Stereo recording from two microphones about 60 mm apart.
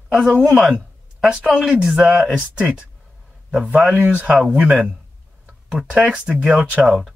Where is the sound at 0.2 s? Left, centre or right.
Centre.